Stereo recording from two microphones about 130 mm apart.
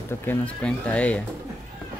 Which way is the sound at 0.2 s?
10° left (ahead or behind).